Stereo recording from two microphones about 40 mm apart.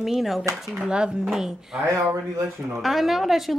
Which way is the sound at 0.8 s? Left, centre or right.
Right.